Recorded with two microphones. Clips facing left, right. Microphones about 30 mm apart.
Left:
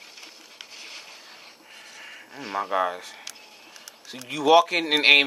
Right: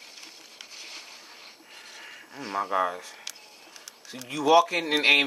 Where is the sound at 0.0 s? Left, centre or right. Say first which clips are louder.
Left 1 dB; centre.